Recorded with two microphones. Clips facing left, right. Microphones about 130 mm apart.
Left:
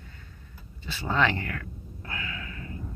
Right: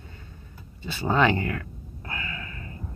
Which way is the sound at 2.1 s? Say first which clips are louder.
Right 1 dB; centre (ahead or behind).